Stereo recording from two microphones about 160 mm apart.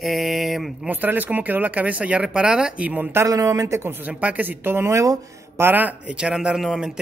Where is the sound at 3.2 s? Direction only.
20° right (ahead or behind).